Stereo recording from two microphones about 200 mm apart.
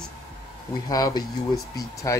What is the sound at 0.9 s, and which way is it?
Speech, 20° left (ahead or behind).